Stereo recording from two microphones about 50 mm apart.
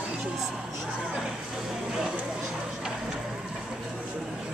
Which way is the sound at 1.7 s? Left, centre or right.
Centre.